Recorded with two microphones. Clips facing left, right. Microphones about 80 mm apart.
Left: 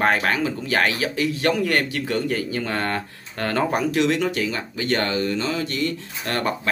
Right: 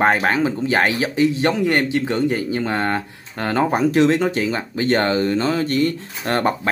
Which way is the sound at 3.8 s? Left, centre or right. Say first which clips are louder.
Right 5 dB; right.